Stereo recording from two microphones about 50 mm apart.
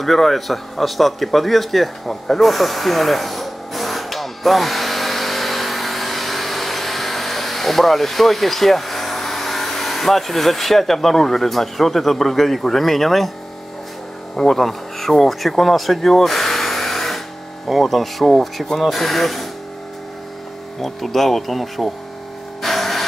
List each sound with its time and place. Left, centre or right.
0.0 s speech: centre
14.3 s speech: centre
20.8 s speech: centre
22.6 s a sound: centre